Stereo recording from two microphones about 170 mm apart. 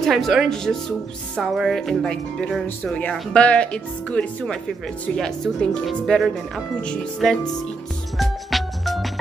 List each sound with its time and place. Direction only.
0.0 s speech: centre (ahead or behind)
8.2 s music: centre (ahead or behind)